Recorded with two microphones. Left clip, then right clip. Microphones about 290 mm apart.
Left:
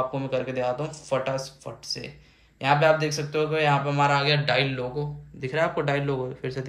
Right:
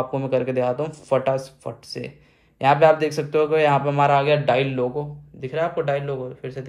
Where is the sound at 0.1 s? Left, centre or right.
Right.